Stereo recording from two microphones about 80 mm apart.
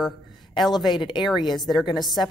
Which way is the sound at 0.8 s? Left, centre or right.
Left.